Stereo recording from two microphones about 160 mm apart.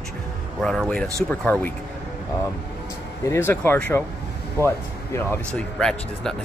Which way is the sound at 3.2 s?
15° left (ahead or behind).